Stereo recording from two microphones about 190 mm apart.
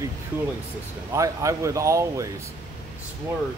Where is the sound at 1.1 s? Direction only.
15° right (ahead or behind).